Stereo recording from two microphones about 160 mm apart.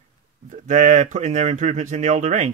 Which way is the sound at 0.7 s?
50° right (ahead or behind).